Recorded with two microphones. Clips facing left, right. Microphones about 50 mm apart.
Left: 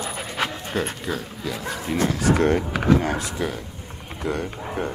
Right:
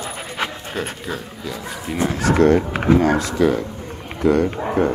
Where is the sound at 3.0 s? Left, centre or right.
Right.